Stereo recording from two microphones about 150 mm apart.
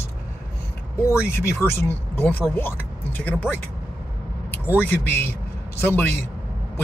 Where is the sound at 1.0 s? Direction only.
20° left (ahead or behind).